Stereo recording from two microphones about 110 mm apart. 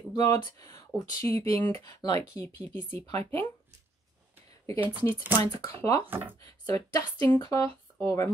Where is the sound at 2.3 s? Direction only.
25° left (ahead or behind).